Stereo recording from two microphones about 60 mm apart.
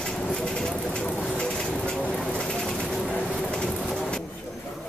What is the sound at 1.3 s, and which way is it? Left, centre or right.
Vehicle, centre.